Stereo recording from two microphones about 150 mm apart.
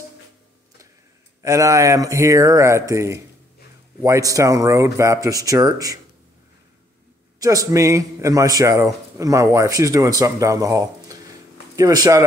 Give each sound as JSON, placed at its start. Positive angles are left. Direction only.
{"t": 1.4, "sound": "speech", "side_deg": -20}
{"t": 7.3, "sound": "speech", "side_deg": -25}